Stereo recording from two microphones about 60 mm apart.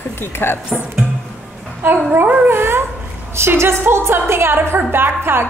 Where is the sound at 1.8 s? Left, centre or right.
Right.